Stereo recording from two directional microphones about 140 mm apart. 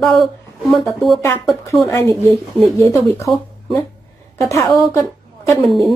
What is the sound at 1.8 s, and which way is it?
A woman's voice, 20° left (ahead or behind).